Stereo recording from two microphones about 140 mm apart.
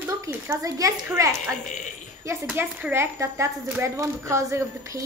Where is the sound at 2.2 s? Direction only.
20° right (ahead or behind).